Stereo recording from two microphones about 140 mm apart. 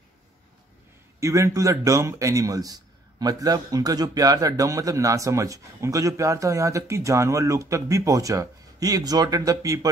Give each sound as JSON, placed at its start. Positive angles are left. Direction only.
{"t": 1.2, "sound": "a man's voice", "side_deg": -20}